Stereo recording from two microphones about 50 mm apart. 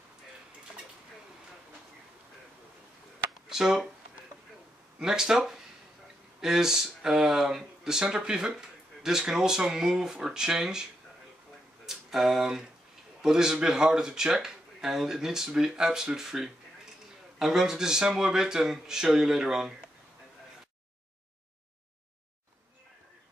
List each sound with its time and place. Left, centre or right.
3.4 s speech: centre
4.9 s speech: centre